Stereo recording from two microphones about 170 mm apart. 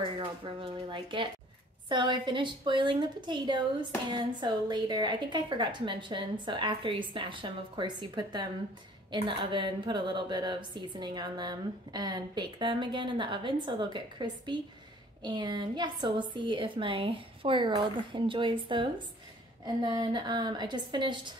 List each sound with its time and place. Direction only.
0.6 s a woman's voice: 30° right (ahead or behind)